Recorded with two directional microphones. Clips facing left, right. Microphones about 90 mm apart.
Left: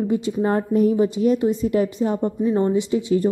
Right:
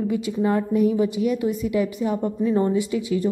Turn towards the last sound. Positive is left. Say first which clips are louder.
# left 3 dB
turn(degrees=35)  # may be behind; listen again after turning